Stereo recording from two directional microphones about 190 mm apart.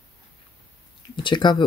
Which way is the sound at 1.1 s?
25° left (ahead or behind).